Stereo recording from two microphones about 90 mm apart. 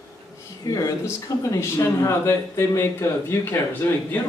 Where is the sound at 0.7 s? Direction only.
40° left (ahead or behind).